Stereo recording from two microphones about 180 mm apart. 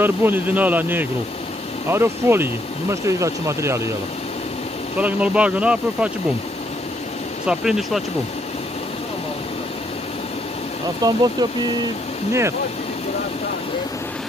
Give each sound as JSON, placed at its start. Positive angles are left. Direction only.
{"t": 0.0, "sound": "speech", "side_deg": -10}
{"t": 4.9, "sound": "speech", "side_deg": -5}
{"t": 7.4, "sound": "speech", "side_deg": -5}
{"t": 11.0, "sound": "speech", "side_deg": -20}
{"t": 12.3, "sound": "speech", "side_deg": -15}